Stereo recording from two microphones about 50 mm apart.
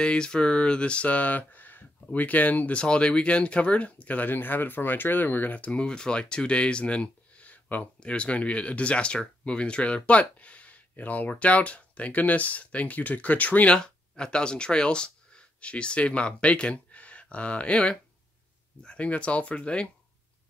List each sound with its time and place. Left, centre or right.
0.0 s speech: centre
13.7 s speech: centre